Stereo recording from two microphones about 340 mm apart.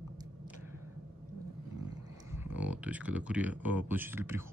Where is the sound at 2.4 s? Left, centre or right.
Centre.